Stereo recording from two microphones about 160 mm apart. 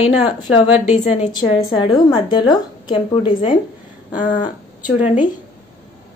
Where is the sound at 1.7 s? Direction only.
30° left (ahead or behind).